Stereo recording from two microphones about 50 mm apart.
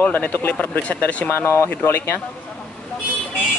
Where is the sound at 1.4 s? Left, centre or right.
Left.